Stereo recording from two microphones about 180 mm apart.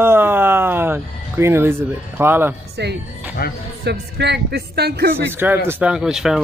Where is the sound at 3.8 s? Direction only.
70° right (ahead or behind).